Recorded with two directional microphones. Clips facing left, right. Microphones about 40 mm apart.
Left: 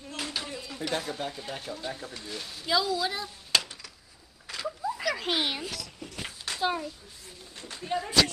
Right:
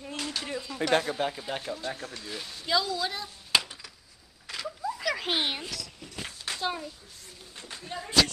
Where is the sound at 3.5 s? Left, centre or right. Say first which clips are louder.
Right 1 dB; centre.